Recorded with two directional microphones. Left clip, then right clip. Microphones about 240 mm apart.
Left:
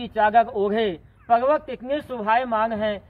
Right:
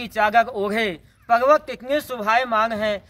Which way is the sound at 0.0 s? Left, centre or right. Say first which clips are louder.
Even; right.